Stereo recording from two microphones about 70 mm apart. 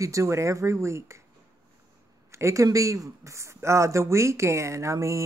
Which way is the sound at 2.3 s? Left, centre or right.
Right.